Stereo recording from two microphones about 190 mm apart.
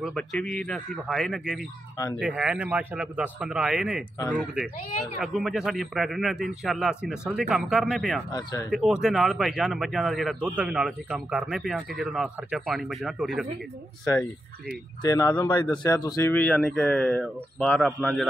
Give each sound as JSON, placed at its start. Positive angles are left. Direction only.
{"t": 0.0, "sound": "speech", "side_deg": 5}
{"t": 8.3, "sound": "speech", "side_deg": 20}
{"t": 8.6, "sound": "speech", "side_deg": -5}
{"t": 15.0, "sound": "speech", "side_deg": 20}
{"t": 16.3, "sound": "speech", "side_deg": 5}